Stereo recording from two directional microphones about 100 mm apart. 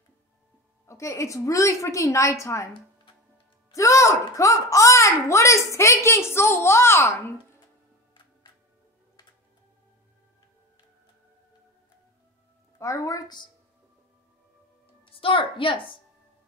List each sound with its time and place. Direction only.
0.8 s a woman's voice: 30° left (ahead or behind)
3.7 s a child's voice: 30° left (ahead or behind)
12.7 s a woman's voice: 30° left (ahead or behind)
15.0 s a woman's voice: 60° left (ahead or behind)